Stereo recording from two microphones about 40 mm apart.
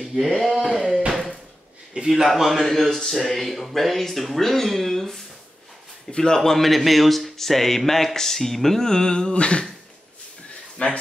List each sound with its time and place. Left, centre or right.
0.2 s speech: centre
2.0 s a man's voice: right
2.3 s speech: centre
6.3 s speech: centre; by 9.7 s left
10.8 s speech: left